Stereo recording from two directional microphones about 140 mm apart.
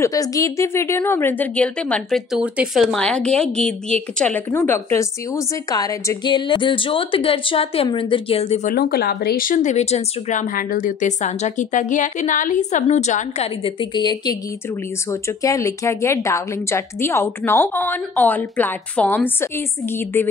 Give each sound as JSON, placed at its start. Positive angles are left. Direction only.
{"t": 0.0, "sound": "a woman's voice", "side_deg": 25}
{"t": 2.4, "sound": "a woman's voice", "side_deg": -10}
{"t": 4.5, "sound": "a woman's voice", "side_deg": 15}
{"t": 8.6, "sound": "speech", "side_deg": 90}
{"t": 15.0, "sound": "a woman's voice", "side_deg": 20}